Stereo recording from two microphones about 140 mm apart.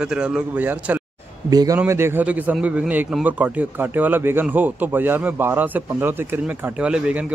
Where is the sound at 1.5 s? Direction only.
25° right (ahead or behind).